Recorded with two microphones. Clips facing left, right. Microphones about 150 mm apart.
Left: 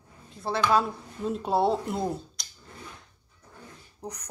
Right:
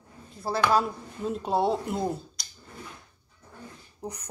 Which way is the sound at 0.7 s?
Centre (ahead or behind).